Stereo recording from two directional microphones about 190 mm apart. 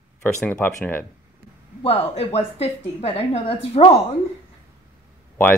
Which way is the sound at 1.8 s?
35° left (ahead or behind).